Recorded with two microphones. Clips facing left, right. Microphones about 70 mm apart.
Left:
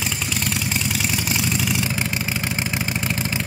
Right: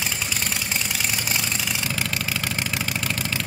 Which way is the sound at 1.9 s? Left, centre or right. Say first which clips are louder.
Left 2 dB; centre.